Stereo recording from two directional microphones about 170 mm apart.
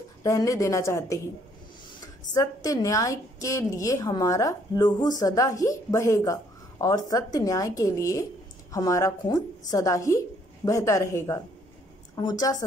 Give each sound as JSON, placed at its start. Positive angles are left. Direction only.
{"t": 0.2, "sound": "a woman's voice", "side_deg": 20}
{"t": 2.3, "sound": "a woman's voice", "side_deg": 20}